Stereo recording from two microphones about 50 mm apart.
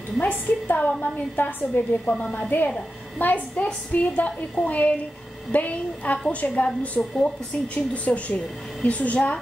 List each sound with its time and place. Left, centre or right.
0.2 s a woman's voice: left
7.0 s speech: centre
7.7 s speech: left